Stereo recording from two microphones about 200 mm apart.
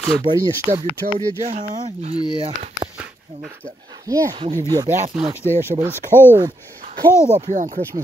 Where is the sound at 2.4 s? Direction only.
30° right (ahead or behind).